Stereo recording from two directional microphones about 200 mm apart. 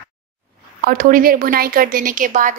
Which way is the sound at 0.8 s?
45° right (ahead or behind).